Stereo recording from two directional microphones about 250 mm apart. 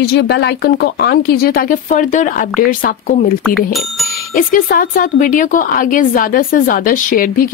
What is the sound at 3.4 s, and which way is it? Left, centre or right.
Speech, centre.